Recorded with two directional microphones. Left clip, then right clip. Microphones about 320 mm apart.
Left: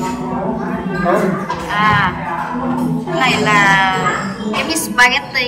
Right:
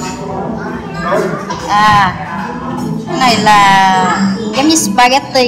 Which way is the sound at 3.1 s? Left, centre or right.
Centre.